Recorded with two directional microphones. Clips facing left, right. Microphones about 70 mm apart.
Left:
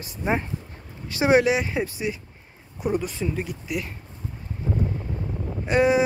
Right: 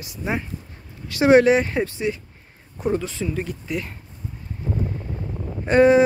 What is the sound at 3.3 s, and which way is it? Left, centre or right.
Speech, centre.